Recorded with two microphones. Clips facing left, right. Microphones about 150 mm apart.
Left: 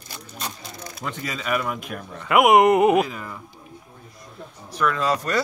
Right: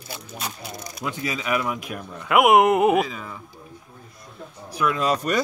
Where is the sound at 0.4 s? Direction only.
10° right (ahead or behind).